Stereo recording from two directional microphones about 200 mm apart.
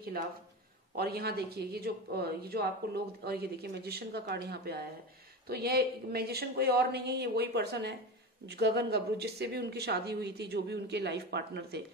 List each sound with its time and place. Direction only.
0.9 s speech: 50° right (ahead or behind)